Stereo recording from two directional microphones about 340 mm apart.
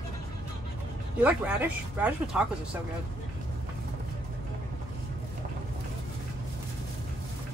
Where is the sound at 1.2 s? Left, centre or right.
Centre.